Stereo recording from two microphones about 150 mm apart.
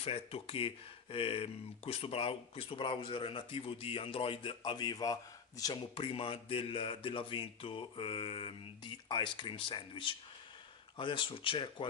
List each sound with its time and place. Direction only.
0.0 s speech: 40° left (ahead or behind)